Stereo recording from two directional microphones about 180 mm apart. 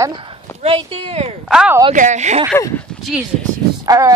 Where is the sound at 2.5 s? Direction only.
10° left (ahead or behind).